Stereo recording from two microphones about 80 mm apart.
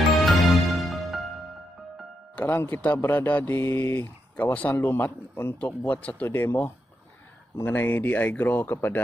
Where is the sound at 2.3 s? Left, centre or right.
Left.